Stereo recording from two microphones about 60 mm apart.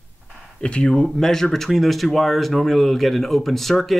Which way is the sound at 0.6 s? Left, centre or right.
Centre.